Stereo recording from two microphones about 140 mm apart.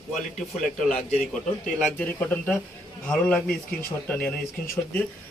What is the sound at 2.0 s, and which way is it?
A man's voice, 10° left (ahead or behind).